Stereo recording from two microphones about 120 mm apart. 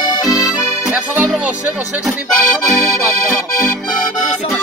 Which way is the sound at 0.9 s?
15° right (ahead or behind).